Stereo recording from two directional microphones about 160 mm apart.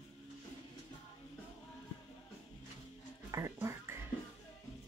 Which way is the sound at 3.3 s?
20° right (ahead or behind).